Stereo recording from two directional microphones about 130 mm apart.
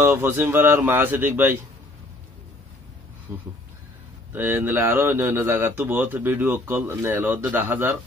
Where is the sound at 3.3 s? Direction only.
15° right (ahead or behind).